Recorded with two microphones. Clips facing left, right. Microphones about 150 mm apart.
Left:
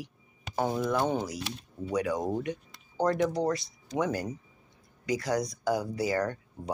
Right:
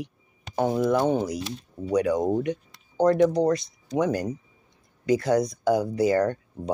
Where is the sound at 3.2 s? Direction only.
20° right (ahead or behind).